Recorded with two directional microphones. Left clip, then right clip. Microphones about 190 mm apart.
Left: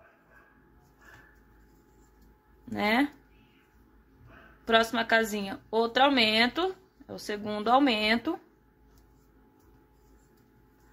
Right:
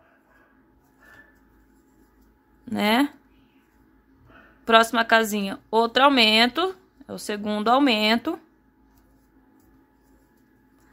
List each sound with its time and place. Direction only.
2.6 s speech: 30° right (ahead or behind)
4.6 s speech: 30° right (ahead or behind)